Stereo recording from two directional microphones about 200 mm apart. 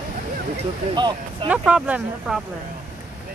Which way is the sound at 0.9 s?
20° right (ahead or behind).